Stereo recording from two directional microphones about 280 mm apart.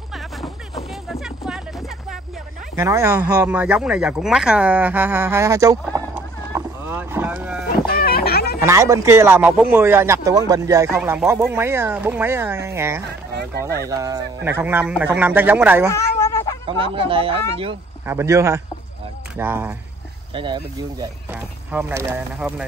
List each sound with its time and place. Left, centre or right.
1.0 s music: centre
2.7 s speech: centre
7.9 s a sound: left
8.5 s a man's voice: centre
16.2 s cat: centre
16.6 s a man's voice: centre